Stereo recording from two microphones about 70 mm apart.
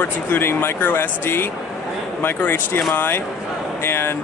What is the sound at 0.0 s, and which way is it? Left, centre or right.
Speech, left.